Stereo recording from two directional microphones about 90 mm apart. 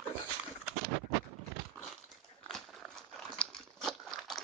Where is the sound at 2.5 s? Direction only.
5° left (ahead or behind).